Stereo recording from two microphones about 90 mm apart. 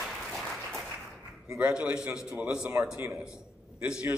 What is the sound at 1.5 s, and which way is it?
A man's voice, 10° right (ahead or behind).